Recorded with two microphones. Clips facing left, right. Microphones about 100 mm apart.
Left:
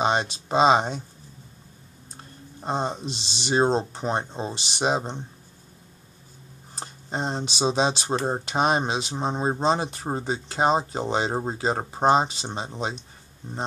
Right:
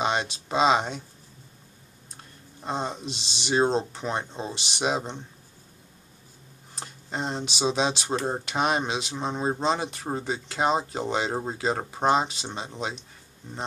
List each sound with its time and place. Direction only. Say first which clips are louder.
0.0 s speech: left 3 dB; 35° left (ahead or behind)
2.1 s speech: left 5 dB; 35° left (ahead or behind)
6.7 s speech: left 3 dB; 35° left (ahead or behind)